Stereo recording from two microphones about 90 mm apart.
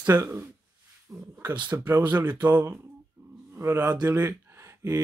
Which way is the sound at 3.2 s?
20° right (ahead or behind).